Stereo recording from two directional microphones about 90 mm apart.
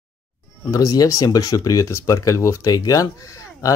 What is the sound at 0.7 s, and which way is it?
Speech, 40° left (ahead or behind).